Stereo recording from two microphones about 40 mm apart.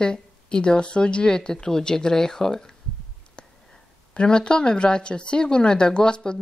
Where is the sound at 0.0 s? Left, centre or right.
Left.